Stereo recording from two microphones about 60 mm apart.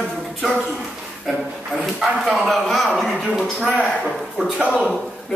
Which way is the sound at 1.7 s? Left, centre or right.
Centre.